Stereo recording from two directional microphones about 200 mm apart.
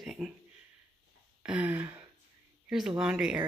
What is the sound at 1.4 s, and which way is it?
Speech, 5° right (ahead or behind).